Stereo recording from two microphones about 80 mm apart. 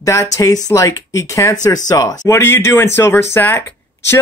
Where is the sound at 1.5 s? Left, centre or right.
Left.